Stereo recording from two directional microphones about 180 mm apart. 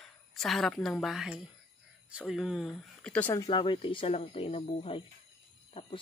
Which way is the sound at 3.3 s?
20° left (ahead or behind).